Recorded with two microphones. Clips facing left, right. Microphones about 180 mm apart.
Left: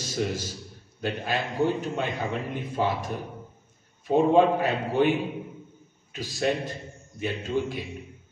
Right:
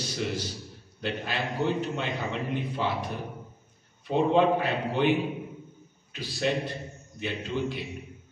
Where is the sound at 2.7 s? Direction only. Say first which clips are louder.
Left 8 dB; 45° left (ahead or behind).